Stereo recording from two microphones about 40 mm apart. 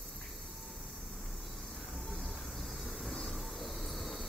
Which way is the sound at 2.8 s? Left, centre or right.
Centre.